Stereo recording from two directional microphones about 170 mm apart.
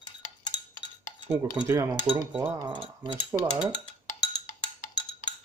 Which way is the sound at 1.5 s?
15° right (ahead or behind).